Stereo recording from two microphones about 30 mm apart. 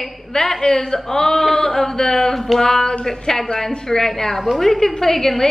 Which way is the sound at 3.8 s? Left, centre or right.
Centre.